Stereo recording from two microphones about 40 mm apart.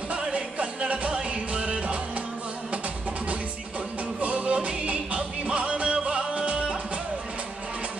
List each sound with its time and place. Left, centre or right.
0.1 s music: right
4.2 s music: right